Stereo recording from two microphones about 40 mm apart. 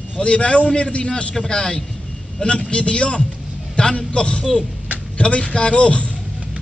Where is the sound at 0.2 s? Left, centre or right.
Left.